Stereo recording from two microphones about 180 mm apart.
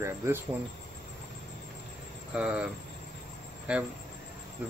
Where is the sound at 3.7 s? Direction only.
5° right (ahead or behind).